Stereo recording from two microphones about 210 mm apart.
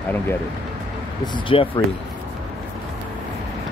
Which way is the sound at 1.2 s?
25° left (ahead or behind).